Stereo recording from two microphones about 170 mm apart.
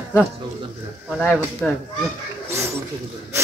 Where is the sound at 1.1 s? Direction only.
5° left (ahead or behind).